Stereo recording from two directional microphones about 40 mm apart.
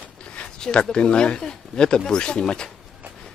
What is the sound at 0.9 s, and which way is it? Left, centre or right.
Speech, left.